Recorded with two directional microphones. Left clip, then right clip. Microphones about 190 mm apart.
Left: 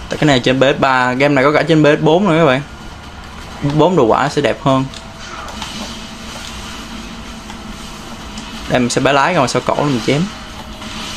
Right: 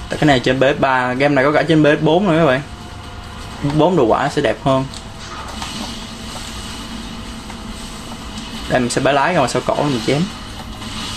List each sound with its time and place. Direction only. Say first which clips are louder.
0.1 s speech: left 1 dB; 15° left (ahead or behind)
3.7 s speech: left 2 dB; 15° left (ahead or behind)
8.6 s speech: left 2 dB; 15° left (ahead or behind)